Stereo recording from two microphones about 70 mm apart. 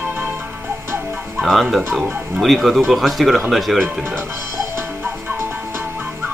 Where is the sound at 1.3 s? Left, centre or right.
Centre.